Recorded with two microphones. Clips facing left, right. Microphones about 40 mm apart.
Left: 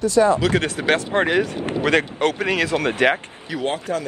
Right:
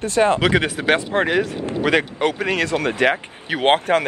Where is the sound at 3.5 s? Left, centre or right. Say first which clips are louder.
Right 7 dB; right.